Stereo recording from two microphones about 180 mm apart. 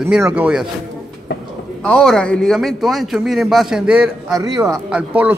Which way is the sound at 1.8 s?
5° left (ahead or behind).